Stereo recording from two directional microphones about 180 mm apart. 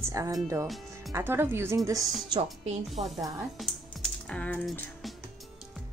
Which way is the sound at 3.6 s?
5° left (ahead or behind).